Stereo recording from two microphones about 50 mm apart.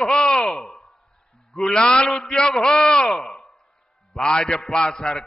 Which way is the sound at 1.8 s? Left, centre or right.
Centre.